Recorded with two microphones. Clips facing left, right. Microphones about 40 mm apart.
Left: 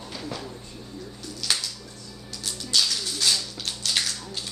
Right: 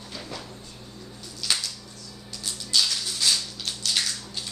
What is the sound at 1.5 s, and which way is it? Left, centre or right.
Music, centre.